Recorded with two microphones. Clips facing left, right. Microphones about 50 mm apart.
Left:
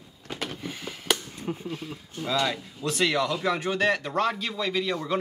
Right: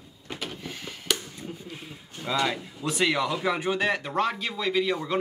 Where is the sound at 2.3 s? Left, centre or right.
Centre.